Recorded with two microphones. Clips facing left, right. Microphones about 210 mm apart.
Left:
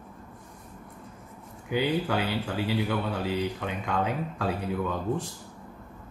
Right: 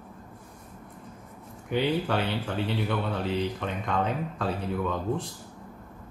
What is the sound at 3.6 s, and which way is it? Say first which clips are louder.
Speech: right 1 dB; 5° left (ahead or behind).